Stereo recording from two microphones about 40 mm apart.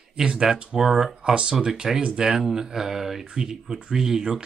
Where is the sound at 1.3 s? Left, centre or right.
Right.